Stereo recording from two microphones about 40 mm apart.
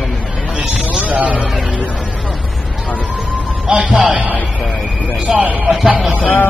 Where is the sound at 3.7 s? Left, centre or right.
Right.